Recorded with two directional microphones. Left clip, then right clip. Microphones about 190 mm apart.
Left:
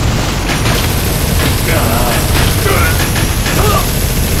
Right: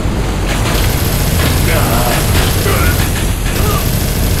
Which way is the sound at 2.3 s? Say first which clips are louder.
Left 2 dB; 20° left (ahead or behind).